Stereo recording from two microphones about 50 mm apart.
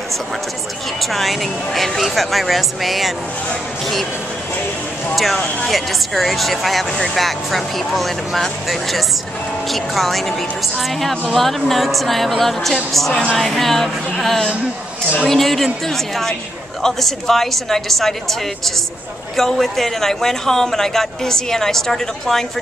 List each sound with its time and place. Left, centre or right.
1.0 s speech: centre
5.1 s speech: centre
19.3 s a man's voice: centre